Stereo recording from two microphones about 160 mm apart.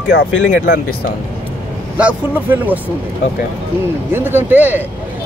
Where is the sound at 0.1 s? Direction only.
90° left.